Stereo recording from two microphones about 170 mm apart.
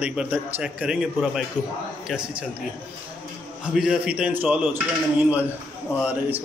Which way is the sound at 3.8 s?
5° right (ahead or behind).